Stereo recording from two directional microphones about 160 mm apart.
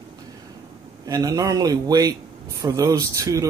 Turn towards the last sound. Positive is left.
turn(degrees=-20)  # may be behind; listen again after turning